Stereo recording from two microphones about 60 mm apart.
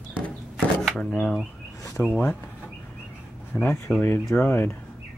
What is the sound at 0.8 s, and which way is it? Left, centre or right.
Speech, centre.